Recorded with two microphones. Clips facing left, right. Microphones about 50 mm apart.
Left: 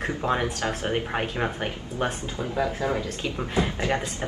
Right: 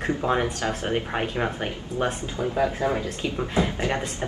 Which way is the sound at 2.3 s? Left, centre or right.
Right.